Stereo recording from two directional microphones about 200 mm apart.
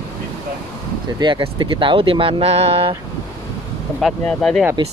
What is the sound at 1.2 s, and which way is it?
Speech, 25° right (ahead or behind).